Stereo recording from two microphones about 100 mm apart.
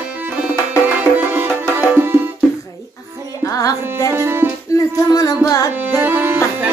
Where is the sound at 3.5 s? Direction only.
35° left (ahead or behind).